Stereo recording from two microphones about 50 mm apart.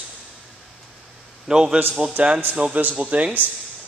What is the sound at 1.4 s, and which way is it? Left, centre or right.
Speech, centre.